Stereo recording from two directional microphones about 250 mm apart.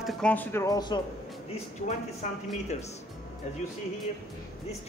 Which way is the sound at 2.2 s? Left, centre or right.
Left.